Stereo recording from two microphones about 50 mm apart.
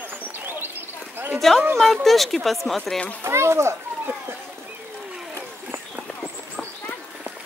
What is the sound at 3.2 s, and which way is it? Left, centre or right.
Speech, right.